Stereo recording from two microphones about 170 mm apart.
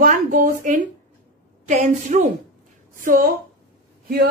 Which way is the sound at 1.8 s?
45° right (ahead or behind).